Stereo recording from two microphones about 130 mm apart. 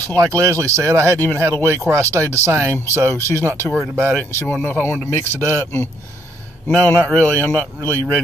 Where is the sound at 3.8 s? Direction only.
15° right (ahead or behind).